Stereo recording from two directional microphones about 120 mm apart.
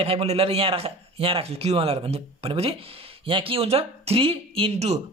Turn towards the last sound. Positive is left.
turn(degrees=-60)  # may be behind; listen again after turning